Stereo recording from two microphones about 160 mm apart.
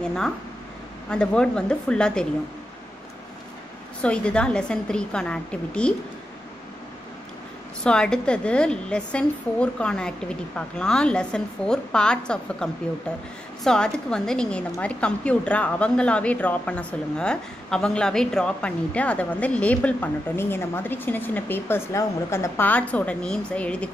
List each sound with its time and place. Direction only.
0.0 s a woman's voice: 5° left (ahead or behind)
4.0 s a woman's voice: 5° left (ahead or behind)
7.8 s a woman's voice: 5° left (ahead or behind)
13.7 s a woman's voice: 5° left (ahead or behind)